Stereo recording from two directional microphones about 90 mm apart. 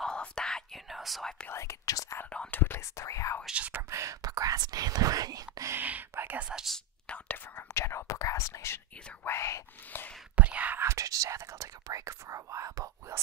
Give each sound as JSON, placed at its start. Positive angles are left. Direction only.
{"t": 0.0, "sound": "whispering", "side_deg": 10}
{"t": 1.5, "sound": "whispering", "side_deg": 35}
{"t": 2.3, "sound": "whispering", "side_deg": 20}
{"t": 3.4, "sound": "whispering", "side_deg": -15}
{"t": 3.9, "sound": "whispering", "side_deg": -35}
{"t": 5.7, "sound": "whispering", "side_deg": -20}
{"t": 6.5, "sound": "whispering", "side_deg": 0}
{"t": 7.1, "sound": "whispering", "side_deg": 15}
{"t": 7.7, "sound": "whispering", "side_deg": 30}
{"t": 10.3, "sound": "whispering", "side_deg": -15}